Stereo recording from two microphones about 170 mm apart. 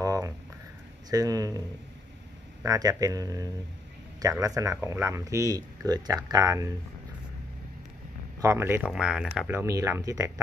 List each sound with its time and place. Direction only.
0.0 s a sound: 20° right (ahead or behind)
1.1 s speech: 20° right (ahead or behind)
2.6 s speech: 20° right (ahead or behind)
8.4 s speech: 15° right (ahead or behind)